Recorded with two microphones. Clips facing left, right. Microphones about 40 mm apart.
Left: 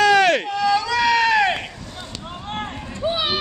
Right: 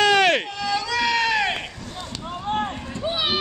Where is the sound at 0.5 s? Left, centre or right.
Centre.